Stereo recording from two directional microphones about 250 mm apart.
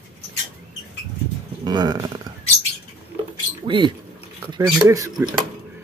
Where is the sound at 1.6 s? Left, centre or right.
Centre.